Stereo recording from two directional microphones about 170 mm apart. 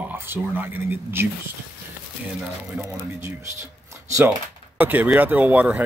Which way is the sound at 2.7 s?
15° right (ahead or behind).